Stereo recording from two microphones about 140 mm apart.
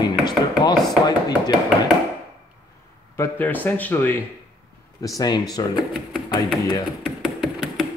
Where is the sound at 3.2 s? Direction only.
15° left (ahead or behind).